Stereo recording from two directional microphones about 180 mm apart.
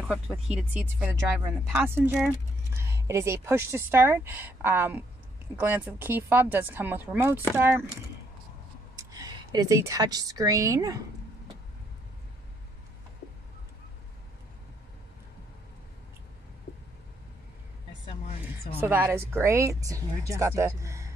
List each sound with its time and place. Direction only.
0.1 s a woman's voice: 5° right (ahead or behind)
8.9 s speech: 20° right (ahead or behind)
18.8 s speech: 10° right (ahead or behind)